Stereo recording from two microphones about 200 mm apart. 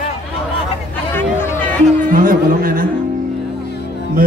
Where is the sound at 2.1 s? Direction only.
45° right (ahead or behind).